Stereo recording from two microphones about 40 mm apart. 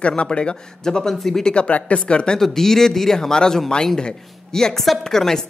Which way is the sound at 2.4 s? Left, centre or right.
Centre.